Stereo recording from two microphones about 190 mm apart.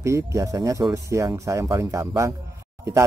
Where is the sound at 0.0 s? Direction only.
15° right (ahead or behind).